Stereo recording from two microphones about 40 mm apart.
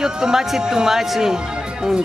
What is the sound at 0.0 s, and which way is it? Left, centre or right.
Speech, centre.